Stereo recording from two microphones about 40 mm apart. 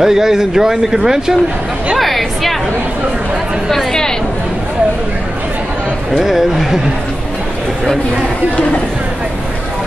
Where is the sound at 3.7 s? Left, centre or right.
Centre.